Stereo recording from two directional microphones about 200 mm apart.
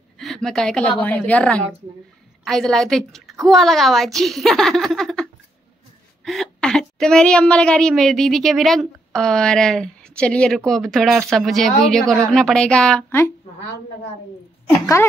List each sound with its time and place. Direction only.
0.2 s a woman's voice: centre (ahead or behind)